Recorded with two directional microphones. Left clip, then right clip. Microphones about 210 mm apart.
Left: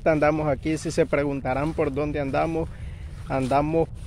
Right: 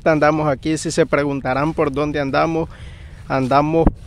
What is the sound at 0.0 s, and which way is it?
Speech, 30° right (ahead or behind).